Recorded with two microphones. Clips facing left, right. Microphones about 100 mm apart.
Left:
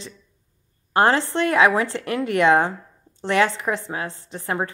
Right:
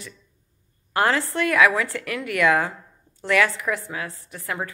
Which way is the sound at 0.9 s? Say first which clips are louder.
Left 3 dB; 30° left (ahead or behind).